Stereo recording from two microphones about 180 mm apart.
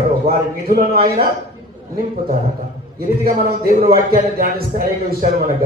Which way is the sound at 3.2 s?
45° right (ahead or behind).